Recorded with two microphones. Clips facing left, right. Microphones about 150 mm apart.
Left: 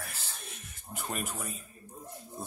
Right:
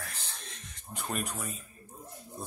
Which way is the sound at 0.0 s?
10° left (ahead or behind).